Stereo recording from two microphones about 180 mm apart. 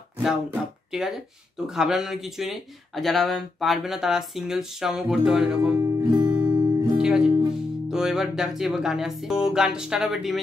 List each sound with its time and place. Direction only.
0.2 s speech: centre (ahead or behind)
5.6 s music: 15° right (ahead or behind)
6.5 s music: 25° right (ahead or behind)
7.0 s music: 5° right (ahead or behind)
7.9 s speech: centre (ahead or behind)